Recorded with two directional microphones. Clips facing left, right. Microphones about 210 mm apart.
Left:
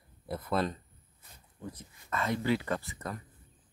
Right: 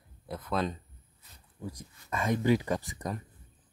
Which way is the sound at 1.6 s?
10° right (ahead or behind).